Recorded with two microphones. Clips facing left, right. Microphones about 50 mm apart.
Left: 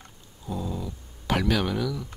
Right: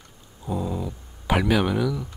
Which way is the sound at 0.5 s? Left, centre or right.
Centre.